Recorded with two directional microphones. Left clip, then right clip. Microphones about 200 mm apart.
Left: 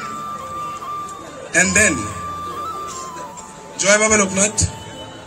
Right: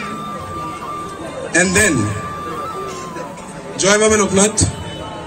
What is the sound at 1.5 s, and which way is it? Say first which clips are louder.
Speech: right 1 dB; 35° left (ahead or behind).